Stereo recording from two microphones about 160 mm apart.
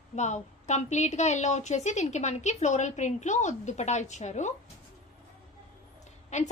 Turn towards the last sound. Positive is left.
turn(degrees=45)  # may be behind; listen again after turning